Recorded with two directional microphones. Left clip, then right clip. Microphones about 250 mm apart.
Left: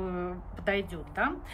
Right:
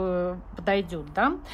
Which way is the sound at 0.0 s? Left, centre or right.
Centre.